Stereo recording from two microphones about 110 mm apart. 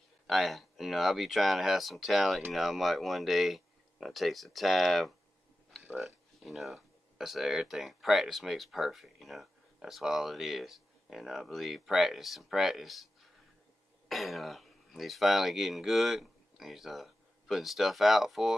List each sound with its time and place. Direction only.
0.3 s speech: centre (ahead or behind)